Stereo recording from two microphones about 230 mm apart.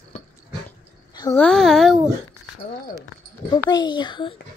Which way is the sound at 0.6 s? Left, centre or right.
Centre.